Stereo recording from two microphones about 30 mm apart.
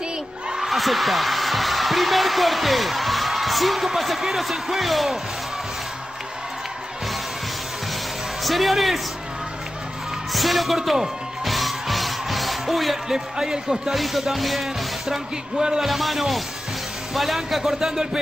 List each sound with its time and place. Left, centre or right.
0.7 s speech: centre
8.5 s speech: centre
10.3 s speech: centre
11.4 s music: centre
13.1 s a man's voice: right
13.9 s speech: centre
14.3 s music: centre
15.8 s speech: centre
17.7 s a man's voice: right